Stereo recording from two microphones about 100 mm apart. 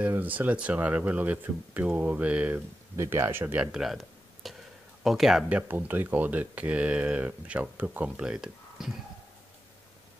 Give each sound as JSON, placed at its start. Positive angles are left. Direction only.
{"t": 0.0, "sound": "speech", "side_deg": -15}
{"t": 3.7, "sound": "a sound", "side_deg": -5}
{"t": 5.0, "sound": "speech", "side_deg": -5}
{"t": 5.6, "sound": "speech", "side_deg": -15}